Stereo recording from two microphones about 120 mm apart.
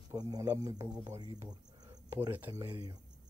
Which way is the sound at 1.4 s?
35° right (ahead or behind).